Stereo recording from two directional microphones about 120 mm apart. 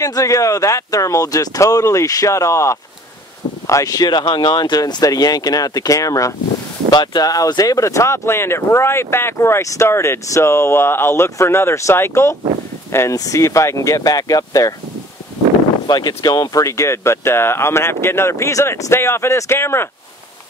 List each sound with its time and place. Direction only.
0.0 s speech: 25° left (ahead or behind)
15.9 s speech: 35° left (ahead or behind)